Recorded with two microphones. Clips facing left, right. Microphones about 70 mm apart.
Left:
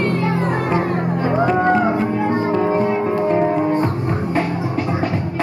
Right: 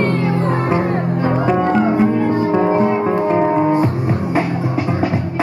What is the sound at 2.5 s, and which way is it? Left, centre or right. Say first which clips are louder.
Music: right 3 dB; centre.